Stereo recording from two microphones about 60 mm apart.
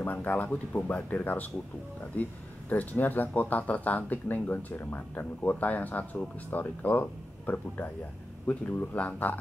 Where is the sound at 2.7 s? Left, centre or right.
Left.